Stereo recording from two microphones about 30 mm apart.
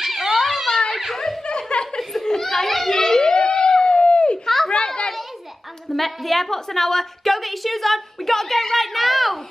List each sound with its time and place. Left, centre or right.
0.0 s wail: centre
1.1 s snicker: centre
1.7 s chuckle: left
2.2 s children playing: centre
2.9 s a sound: centre
3.2 s a sound: left
5.9 s a woman's voice: centre